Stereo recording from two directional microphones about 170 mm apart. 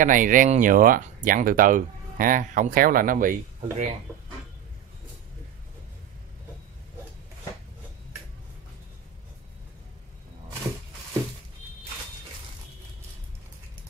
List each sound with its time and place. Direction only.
0.0 s speech: 50° right (ahead or behind)